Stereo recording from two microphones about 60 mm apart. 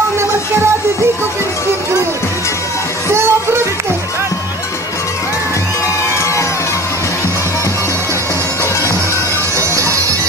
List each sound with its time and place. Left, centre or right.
3.1 s music: right
9.6 s music: right